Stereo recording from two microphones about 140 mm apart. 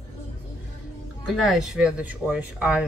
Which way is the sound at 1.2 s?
Centre (ahead or behind).